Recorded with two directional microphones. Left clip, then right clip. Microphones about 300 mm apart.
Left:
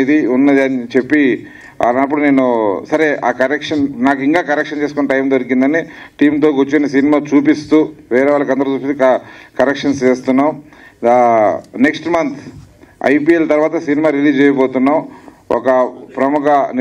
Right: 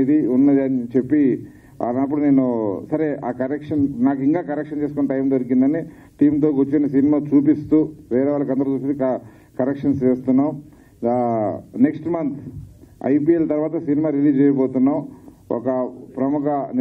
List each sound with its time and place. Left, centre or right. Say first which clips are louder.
0.0 s a man's voice: left 5 dB; centre